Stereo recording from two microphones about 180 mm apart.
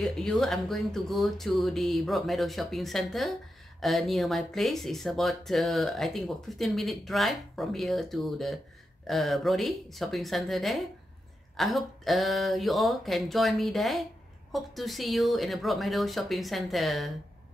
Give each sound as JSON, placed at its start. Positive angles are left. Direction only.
{"t": 0.0, "sound": "speech", "side_deg": 5}